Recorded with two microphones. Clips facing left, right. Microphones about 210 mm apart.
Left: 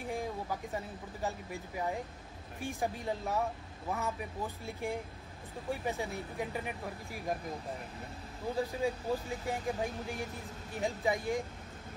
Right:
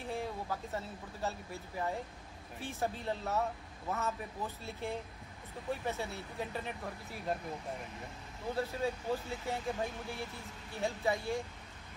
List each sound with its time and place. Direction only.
0.0 s speech: 15° left (ahead or behind)
8.5 s speech: 15° left (ahead or behind)